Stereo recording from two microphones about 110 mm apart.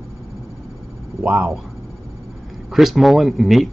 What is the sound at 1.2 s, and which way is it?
Speech, 15° right (ahead or behind).